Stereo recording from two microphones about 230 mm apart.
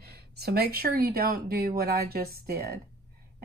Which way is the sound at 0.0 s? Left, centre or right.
Right.